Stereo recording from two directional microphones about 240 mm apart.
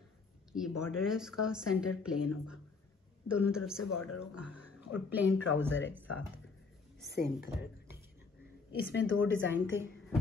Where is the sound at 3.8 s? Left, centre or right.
Left.